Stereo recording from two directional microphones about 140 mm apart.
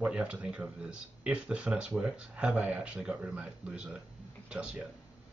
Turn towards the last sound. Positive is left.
turn(degrees=-5)  # may be behind; listen again after turning